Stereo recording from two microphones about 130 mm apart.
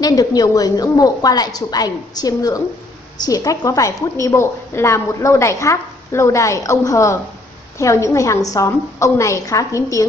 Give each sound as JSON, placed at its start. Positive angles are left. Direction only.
{"t": 0.0, "sound": "a woman's voice", "side_deg": 30}